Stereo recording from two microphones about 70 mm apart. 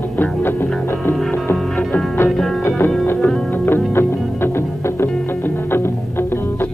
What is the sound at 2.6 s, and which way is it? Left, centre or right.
Music, left.